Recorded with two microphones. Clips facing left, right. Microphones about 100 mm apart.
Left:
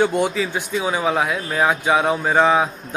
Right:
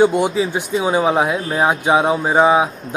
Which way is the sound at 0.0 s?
15° right (ahead or behind).